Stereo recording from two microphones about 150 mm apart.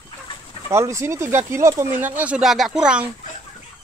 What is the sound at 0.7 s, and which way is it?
Speech, 20° right (ahead or behind).